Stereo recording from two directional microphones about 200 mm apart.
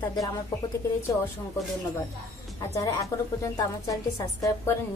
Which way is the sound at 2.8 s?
15° left (ahead or behind).